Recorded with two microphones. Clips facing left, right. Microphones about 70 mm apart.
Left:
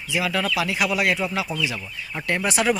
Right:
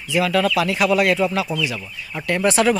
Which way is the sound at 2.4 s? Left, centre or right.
Centre.